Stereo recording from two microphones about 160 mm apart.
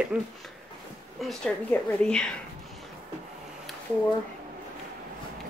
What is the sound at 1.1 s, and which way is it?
A woman's voice, centre (ahead or behind).